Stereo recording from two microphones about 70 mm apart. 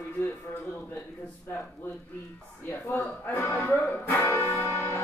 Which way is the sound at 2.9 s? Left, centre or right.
Left.